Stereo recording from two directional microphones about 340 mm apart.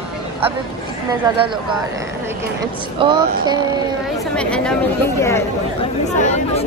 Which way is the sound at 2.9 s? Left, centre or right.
Centre.